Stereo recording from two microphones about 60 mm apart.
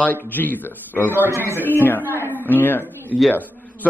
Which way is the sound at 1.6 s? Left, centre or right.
Left.